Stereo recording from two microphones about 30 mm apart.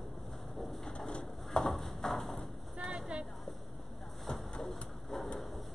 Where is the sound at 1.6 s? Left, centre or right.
Centre.